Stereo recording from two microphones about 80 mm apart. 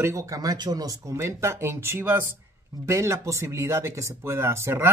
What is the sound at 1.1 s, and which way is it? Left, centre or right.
Speech, right.